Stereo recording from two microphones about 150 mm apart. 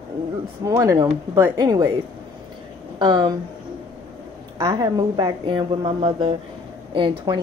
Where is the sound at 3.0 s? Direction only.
30° right (ahead or behind).